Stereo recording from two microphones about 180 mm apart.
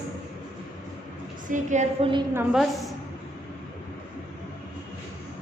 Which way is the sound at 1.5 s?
40° right (ahead or behind).